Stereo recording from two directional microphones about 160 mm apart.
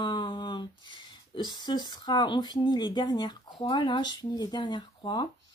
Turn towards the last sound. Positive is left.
turn(degrees=30)  # may be behind; listen again after turning